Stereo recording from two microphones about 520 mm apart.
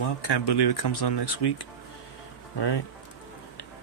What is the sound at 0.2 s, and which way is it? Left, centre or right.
Speech, left.